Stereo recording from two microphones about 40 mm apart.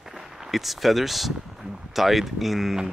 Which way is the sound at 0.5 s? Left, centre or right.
Centre.